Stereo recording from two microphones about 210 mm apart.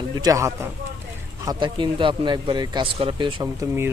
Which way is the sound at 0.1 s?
15° right (ahead or behind).